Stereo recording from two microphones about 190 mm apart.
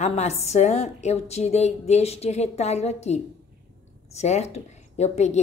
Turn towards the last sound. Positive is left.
turn(degrees=35)  # may be behind; listen again after turning